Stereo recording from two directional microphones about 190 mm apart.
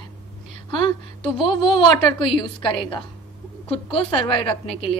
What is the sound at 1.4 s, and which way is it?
A woman's voice, 25° left (ahead or behind).